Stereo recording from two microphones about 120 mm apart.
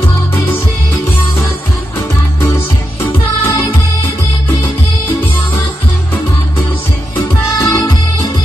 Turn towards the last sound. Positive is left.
turn(degrees=30)  # may be behind; listen again after turning